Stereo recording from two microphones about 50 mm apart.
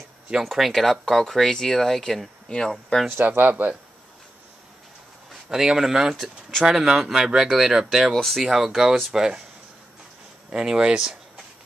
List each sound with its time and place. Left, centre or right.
0.4 s speech: centre
3.3 s speech: right
5.5 s speech: centre
8.1 s speech: centre
8.5 s speech: centre
10.5 s speech: centre